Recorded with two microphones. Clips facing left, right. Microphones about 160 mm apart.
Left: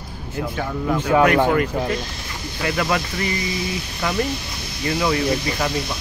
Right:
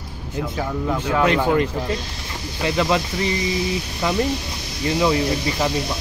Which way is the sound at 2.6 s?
20° right (ahead or behind).